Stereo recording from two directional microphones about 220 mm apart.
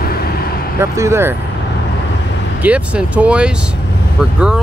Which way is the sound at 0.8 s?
15° right (ahead or behind).